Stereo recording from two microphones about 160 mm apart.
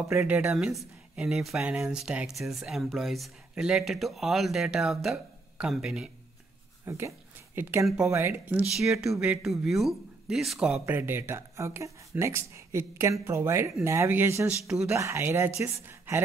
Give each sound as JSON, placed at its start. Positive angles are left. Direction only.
{"t": 0.1, "sound": "speech", "side_deg": -15}
{"t": 0.5, "sound": "speech", "side_deg": -5}
{"t": 6.9, "sound": "speech", "side_deg": -15}
{"t": 11.0, "sound": "speech", "side_deg": -15}
{"t": 14.6, "sound": "speech", "side_deg": -5}
{"t": 14.9, "sound": "speech", "side_deg": -15}